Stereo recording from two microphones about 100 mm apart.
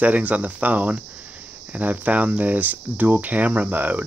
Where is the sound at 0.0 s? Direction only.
15° right (ahead or behind).